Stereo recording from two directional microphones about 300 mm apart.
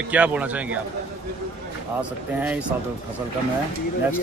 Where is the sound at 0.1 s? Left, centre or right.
Centre.